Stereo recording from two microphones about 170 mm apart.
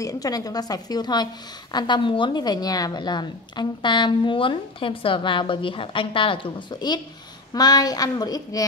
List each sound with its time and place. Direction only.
0.0 s a woman's voice: 20° left (ahead or behind)